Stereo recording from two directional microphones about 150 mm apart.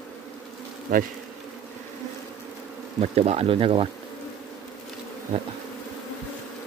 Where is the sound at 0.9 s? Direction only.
70° right (ahead or behind).